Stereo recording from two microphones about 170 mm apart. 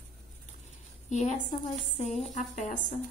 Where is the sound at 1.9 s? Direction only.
40° left (ahead or behind).